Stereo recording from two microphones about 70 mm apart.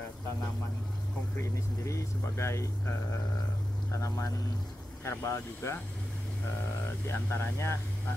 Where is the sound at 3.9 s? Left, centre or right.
Left.